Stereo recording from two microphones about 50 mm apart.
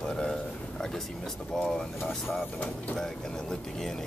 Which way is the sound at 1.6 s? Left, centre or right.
Centre.